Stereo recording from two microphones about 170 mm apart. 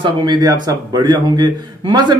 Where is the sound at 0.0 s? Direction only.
25° right (ahead or behind).